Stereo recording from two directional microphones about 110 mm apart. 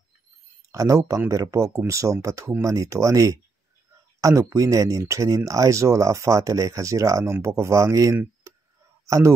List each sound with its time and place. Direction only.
0.7 s speech: 30° right (ahead or behind)